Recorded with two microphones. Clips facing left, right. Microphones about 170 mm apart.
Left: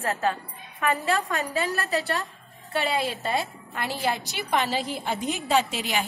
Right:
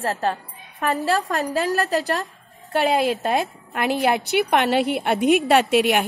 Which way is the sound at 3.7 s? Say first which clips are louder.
Right 8 dB; 65° right (ahead or behind).